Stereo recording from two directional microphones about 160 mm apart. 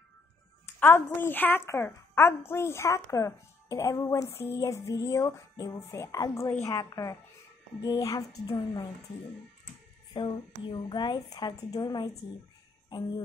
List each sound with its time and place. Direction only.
0.7 s a woman's voice: 15° left (ahead or behind)
10.1 s a woman's voice: 30° left (ahead or behind)